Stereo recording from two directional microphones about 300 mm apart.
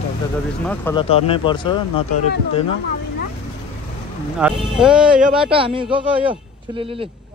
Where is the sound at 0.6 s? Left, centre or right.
Centre.